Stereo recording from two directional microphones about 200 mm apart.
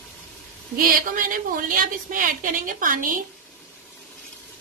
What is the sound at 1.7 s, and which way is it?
A woman's voice, 40° right (ahead or behind).